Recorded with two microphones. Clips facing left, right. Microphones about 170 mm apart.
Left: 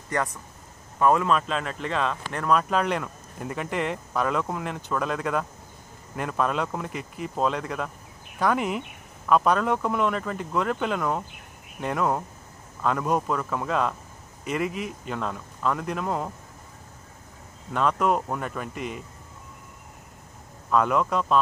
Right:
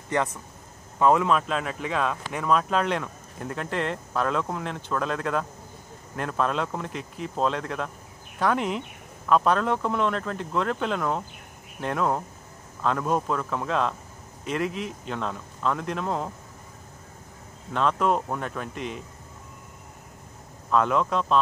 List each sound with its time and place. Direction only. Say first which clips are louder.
0.1 s speech: right 2 dB; 20° right (ahead or behind); by 16.3 s 5° left (ahead or behind)
17.7 s speech: even; 5° left (ahead or behind)
20.7 s speech: even; 5° left (ahead or behind)